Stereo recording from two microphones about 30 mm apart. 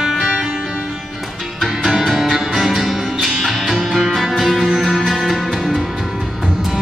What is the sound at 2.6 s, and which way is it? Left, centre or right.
Music, centre.